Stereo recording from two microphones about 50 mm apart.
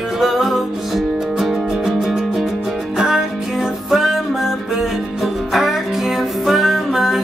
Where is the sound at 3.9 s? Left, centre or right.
Centre.